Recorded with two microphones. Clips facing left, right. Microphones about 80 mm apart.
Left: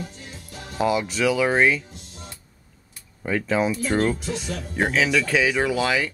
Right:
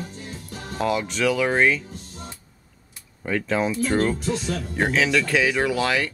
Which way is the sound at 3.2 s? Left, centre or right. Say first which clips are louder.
Left 1 dB; centre.